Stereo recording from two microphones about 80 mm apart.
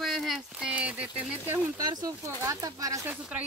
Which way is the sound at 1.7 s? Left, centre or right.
Right.